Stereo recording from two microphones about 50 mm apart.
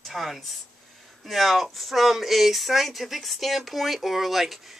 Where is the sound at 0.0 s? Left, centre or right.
Centre.